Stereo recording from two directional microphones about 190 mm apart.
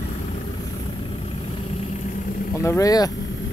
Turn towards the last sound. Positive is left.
turn(degrees=20)  # may be behind; listen again after turning